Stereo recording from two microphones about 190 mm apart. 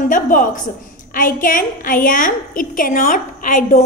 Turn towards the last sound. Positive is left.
turn(degrees=45)  # may be behind; listen again after turning